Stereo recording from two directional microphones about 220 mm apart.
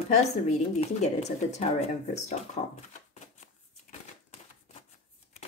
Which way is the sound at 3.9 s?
40° left (ahead or behind).